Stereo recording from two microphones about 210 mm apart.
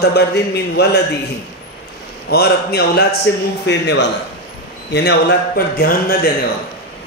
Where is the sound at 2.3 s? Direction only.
50° left (ahead or behind).